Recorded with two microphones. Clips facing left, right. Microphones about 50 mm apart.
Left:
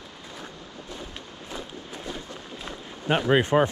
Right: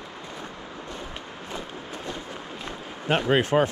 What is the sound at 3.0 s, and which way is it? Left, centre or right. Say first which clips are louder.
Speech: left 1 dB; right.